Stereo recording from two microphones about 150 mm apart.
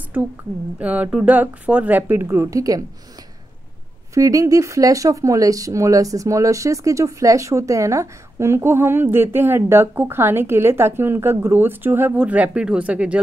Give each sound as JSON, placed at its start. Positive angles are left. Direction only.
{"t": 0.7, "sound": "speech", "side_deg": -10}
{"t": 4.1, "sound": "speech", "side_deg": -20}